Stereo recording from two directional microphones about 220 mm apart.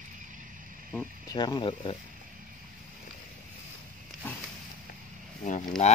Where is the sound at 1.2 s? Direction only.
20° left (ahead or behind).